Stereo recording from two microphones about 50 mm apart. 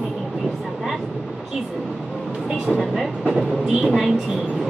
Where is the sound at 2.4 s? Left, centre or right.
Centre.